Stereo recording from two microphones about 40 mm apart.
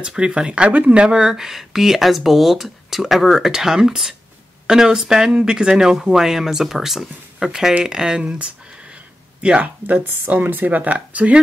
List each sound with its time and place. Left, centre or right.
0.0 s speech: right
1.0 s speech: centre
9.8 s speech: right